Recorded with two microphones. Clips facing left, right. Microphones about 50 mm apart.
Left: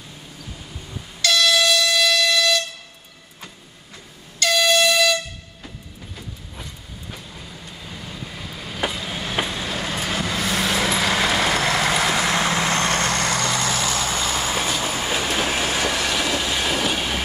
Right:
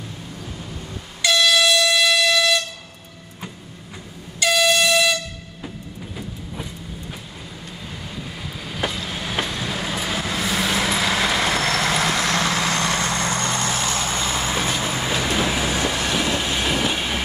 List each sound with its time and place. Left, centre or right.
1.2 s air horn: centre
4.4 s air horn: centre
6.1 s train: centre
12.8 s vehicle: left
13.3 s vehicle: centre
15.6 s train: centre